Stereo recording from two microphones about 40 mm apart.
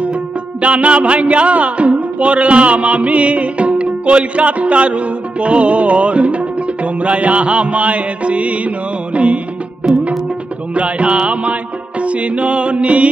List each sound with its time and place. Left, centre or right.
0.6 s music: right
10.7 s music: right